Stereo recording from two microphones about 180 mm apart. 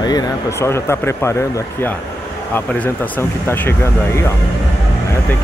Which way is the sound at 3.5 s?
15° left (ahead or behind).